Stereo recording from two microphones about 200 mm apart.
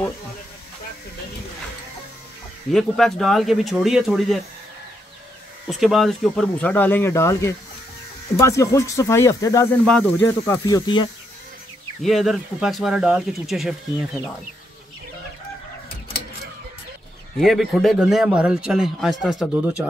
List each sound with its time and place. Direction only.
2.7 s a man's voice: centre (ahead or behind)
5.7 s speech: centre (ahead or behind); by 11.1 s 20° left (ahead or behind)
12.0 s a man's voice: centre (ahead or behind)
17.4 s a man's voice: centre (ahead or behind)